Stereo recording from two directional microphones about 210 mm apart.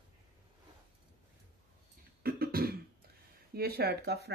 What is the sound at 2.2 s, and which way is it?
Beatboxing, 45° right (ahead or behind).